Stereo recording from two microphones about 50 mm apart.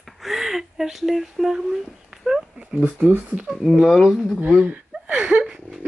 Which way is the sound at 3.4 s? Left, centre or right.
Centre.